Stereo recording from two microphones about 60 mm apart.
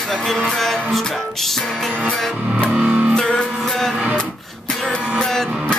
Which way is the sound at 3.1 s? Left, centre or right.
Centre.